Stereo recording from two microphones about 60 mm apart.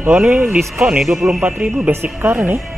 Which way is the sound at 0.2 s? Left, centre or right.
Centre.